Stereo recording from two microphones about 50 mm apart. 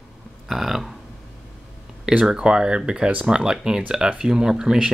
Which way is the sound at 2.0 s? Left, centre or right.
Centre.